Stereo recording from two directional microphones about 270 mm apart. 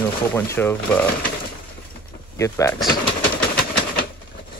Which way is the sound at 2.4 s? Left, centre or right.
Centre.